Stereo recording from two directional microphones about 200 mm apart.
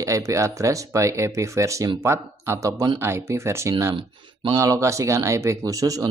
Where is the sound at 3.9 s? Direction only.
25° right (ahead or behind).